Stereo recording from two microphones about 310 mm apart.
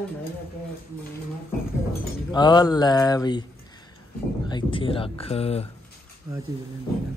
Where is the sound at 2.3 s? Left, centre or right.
Centre.